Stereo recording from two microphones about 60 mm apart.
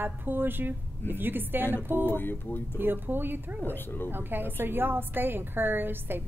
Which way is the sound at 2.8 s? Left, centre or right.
Right.